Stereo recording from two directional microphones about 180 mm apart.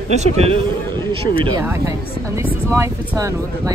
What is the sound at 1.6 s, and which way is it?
Speech, 15° right (ahead or behind).